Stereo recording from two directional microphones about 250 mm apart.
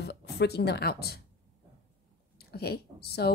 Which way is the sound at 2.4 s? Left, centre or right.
Left.